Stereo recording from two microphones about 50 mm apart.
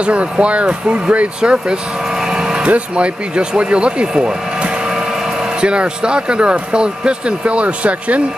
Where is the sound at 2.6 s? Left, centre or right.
Right.